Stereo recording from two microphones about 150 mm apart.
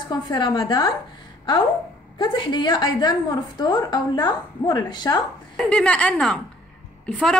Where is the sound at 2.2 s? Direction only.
30° left (ahead or behind).